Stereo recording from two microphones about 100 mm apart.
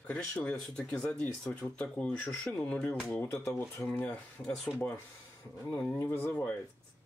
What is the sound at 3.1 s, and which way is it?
Speech, 25° left (ahead or behind).